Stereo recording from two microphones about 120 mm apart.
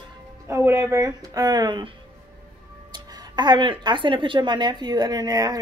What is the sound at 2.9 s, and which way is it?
A woman's voice, 35° right (ahead or behind).